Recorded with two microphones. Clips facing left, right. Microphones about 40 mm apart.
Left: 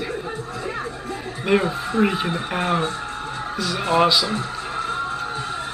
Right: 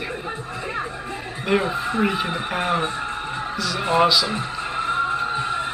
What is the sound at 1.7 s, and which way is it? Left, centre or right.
Speech, centre.